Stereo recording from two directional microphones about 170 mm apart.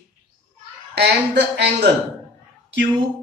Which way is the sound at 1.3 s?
80° right.